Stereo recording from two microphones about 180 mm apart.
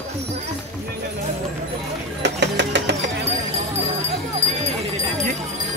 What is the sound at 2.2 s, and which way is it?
Music, 70° right (ahead or behind).